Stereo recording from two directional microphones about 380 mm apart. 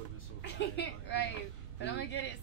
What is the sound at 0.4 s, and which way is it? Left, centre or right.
Speech, left.